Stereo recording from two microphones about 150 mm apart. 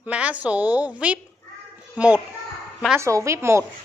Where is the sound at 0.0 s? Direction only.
10° right (ahead or behind).